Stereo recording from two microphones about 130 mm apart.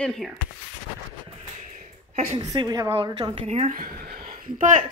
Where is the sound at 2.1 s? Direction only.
65° right (ahead or behind).